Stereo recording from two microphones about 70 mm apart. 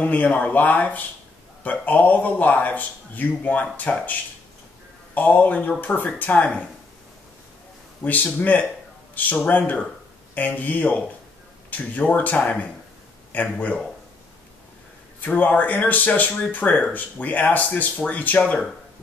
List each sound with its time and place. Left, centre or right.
0.0 s speech: left
5.1 s speech: left
8.0 s speech: left
15.1 s speech: left